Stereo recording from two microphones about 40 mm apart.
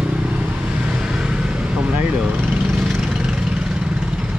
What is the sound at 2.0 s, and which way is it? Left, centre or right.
Speech, right.